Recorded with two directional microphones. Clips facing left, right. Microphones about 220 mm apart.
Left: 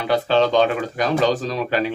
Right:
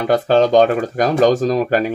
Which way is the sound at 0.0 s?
45° right (ahead or behind).